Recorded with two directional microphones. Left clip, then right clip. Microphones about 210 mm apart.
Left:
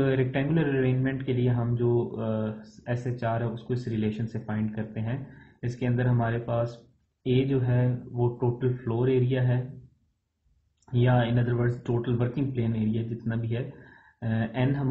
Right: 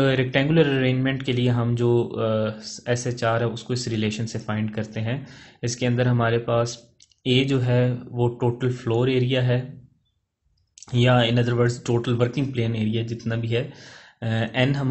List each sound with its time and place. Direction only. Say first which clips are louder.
0.0 s speech: right 5 dB; 40° right (ahead or behind)
10.9 s speech: right 6 dB; 40° right (ahead or behind)